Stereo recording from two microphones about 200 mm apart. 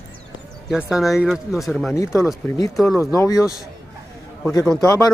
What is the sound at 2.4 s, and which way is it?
Speech, 15° left (ahead or behind).